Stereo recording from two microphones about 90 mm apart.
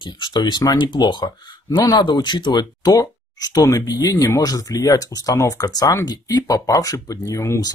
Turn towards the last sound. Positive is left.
turn(degrees=35)  # may be behind; listen again after turning